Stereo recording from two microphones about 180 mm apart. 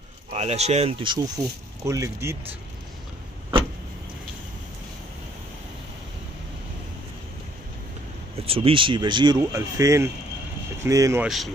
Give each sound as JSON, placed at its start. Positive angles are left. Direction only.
{"t": 0.3, "sound": "speech", "side_deg": -35}
{"t": 8.4, "sound": "speech", "side_deg": -30}
{"t": 11.2, "sound": "speech", "side_deg": 0}